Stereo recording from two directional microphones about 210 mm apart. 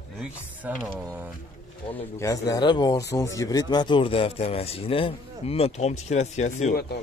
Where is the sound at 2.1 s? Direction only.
15° left (ahead or behind).